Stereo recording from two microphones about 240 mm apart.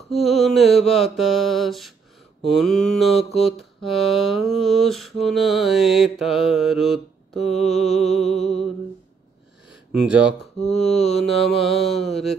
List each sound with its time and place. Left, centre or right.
0.1 s mantra: centre
8.4 s music: left
9.9 s mantra: centre